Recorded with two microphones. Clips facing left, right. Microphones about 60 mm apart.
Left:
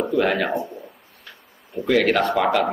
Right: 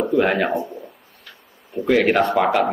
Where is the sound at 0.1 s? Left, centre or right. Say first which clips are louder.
Right 2 dB; centre.